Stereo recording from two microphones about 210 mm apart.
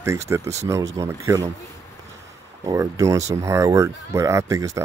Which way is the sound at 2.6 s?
15° right (ahead or behind).